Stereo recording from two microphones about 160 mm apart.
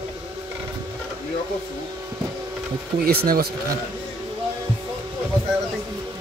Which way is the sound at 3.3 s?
85° right.